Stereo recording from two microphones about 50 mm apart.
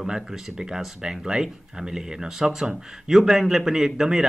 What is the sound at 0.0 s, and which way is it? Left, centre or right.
Speech, centre.